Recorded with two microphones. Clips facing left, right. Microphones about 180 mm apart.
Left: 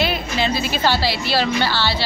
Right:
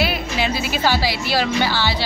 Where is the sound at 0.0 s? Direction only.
10° right (ahead or behind).